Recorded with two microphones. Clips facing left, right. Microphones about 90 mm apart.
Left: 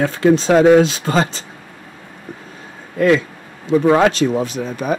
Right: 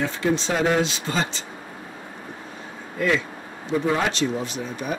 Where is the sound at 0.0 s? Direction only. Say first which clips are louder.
Left 9 dB; 50° left (ahead or behind).